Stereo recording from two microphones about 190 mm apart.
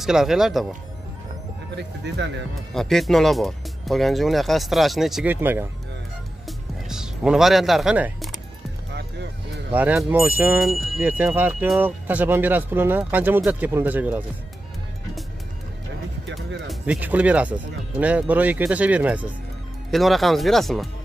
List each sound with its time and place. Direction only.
0.0 s speech: centre (ahead or behind)
1.8 s speech: 65° right (ahead or behind)
2.7 s speech: centre (ahead or behind)
6.4 s music: 5° right (ahead or behind)
9.7 s speech: 5° right (ahead or behind)
16.3 s speech: centre (ahead or behind)